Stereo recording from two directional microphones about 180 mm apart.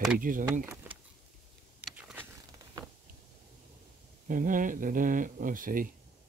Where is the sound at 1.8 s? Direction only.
5° right (ahead or behind).